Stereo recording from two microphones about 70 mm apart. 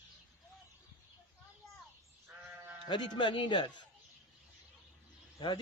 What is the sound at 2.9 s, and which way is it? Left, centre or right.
Speech, left.